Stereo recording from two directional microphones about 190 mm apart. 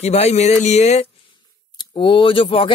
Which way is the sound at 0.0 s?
35° left (ahead or behind).